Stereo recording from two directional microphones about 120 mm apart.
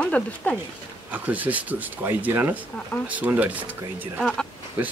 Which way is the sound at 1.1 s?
15° right (ahead or behind).